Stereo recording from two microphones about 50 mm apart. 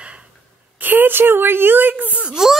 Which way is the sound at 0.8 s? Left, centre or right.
Right.